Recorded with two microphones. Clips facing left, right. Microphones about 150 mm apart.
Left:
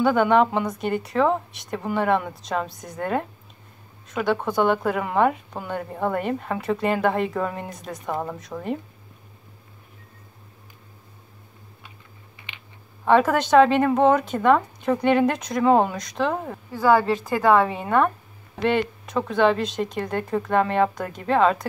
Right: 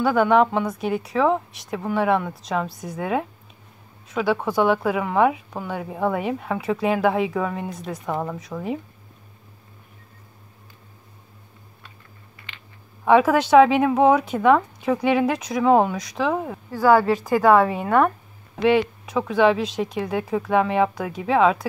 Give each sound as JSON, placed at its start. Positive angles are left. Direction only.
{"t": 0.0, "sound": "speech", "side_deg": -5}
{"t": 12.5, "sound": "a sound", "side_deg": 20}
{"t": 13.0, "sound": "speech", "side_deg": -5}